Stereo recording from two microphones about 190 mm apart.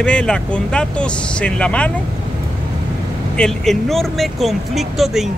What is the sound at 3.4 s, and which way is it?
Speech, centre (ahead or behind).